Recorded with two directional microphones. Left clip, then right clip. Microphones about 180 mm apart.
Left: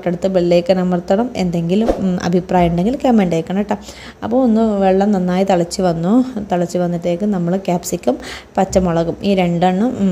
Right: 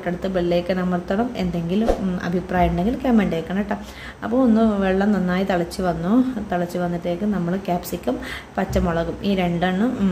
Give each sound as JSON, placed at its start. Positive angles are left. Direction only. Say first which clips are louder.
{"t": 0.0, "sound": "a woman's voice", "louder": "left 7 dB", "side_deg": 40}